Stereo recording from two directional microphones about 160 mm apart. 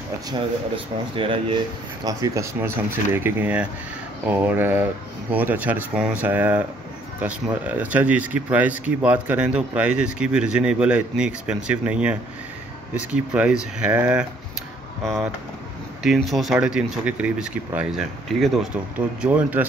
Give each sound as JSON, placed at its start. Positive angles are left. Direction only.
{"t": 1.1, "sound": "speech", "side_deg": -35}
{"t": 2.0, "sound": "speech", "side_deg": -20}
{"t": 16.0, "sound": "speech", "side_deg": 0}